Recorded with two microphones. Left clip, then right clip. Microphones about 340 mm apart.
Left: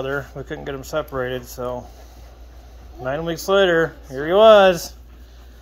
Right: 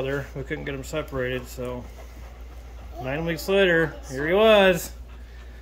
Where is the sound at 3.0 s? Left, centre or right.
Right.